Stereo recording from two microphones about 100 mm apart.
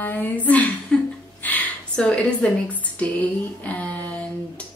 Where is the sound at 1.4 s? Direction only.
15° left (ahead or behind).